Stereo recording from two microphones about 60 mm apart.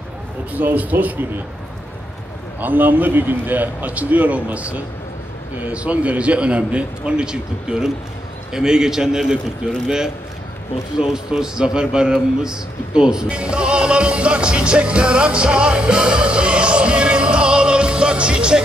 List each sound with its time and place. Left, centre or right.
0.5 s a man's voice: right
2.6 s a man's voice: right; by 18.6 s centre